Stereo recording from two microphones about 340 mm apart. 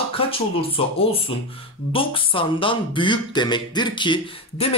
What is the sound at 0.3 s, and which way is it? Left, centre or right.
Speech, centre.